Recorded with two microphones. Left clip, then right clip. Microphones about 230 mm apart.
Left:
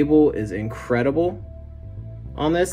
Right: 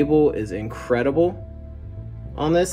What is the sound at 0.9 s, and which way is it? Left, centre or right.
Speech, centre.